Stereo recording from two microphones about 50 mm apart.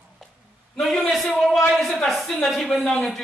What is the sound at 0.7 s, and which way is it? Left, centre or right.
A man's voice, centre.